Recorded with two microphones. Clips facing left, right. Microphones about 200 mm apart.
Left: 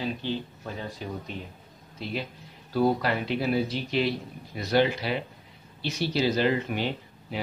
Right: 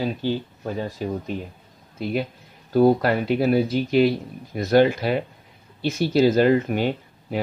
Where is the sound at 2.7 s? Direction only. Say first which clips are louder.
Right 7 dB; 50° right (ahead or behind).